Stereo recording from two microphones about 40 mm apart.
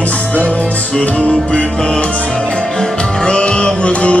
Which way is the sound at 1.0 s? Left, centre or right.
Left.